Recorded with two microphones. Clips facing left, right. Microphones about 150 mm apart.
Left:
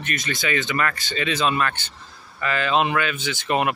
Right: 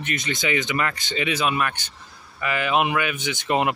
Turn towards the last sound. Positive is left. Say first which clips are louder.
# even
turn(degrees=-20)  # may be behind; listen again after turning